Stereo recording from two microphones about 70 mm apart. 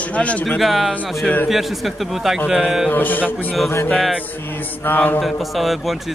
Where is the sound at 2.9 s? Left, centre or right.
Left.